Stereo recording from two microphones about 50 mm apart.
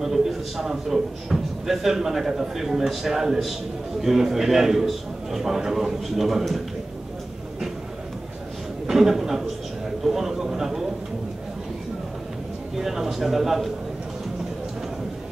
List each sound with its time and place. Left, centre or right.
0.0 s a man's voice: centre
8.8 s a man's voice: centre
10.0 s a sound: centre
12.7 s a man's voice: centre